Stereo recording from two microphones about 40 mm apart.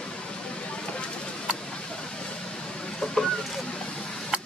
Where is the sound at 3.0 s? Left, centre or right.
Centre.